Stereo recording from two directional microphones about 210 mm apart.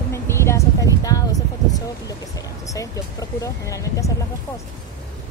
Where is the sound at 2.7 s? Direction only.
15° left (ahead or behind).